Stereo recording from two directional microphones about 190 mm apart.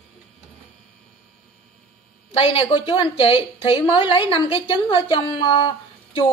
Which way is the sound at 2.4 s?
30° left (ahead or behind).